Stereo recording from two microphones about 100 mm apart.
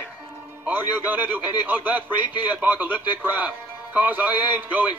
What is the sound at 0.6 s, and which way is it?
Speech, 15° right (ahead or behind).